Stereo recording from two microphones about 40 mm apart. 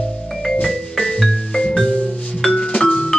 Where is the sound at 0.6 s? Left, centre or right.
Centre.